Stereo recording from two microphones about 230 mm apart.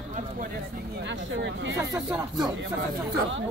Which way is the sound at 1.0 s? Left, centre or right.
Right.